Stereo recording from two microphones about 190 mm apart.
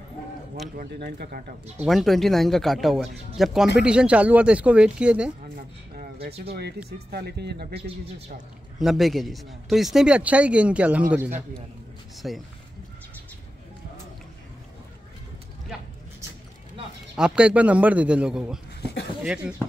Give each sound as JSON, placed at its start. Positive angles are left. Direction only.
{"t": 0.7, "sound": "speech", "side_deg": -60}
{"t": 1.8, "sound": "speech", "side_deg": 0}
{"t": 7.1, "sound": "speech", "side_deg": -60}
{"t": 8.7, "sound": "speech", "side_deg": 0}
{"t": 17.2, "sound": "speech", "side_deg": -5}